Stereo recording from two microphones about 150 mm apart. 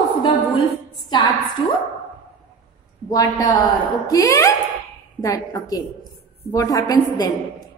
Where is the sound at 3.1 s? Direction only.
25° left (ahead or behind).